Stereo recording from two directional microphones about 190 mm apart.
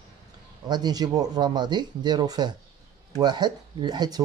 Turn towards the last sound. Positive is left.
turn(degrees=-20)  # may be behind; listen again after turning